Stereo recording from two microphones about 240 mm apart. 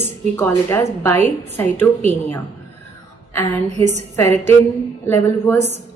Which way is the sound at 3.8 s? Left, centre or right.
Right.